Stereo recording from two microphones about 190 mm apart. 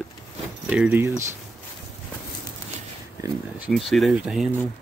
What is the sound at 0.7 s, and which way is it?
Speech, 10° right (ahead or behind).